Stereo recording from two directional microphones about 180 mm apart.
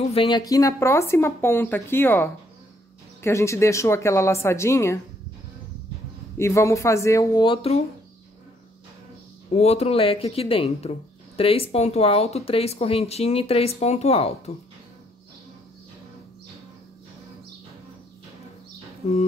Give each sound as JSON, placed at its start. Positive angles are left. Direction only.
{"t": 0.1, "sound": "speech", "side_deg": 30}
{"t": 6.3, "sound": "speech", "side_deg": 15}
{"t": 9.5, "sound": "speech", "side_deg": 35}